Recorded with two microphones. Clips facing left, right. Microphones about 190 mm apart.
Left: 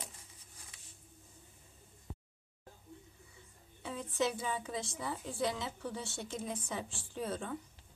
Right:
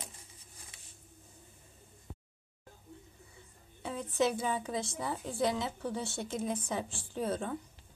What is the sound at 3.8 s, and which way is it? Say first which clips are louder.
A woman's voice: right 4 dB; 50° right (ahead or behind).